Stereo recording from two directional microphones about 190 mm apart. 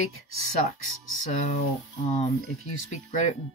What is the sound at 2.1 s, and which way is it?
Speech, 40° left (ahead or behind).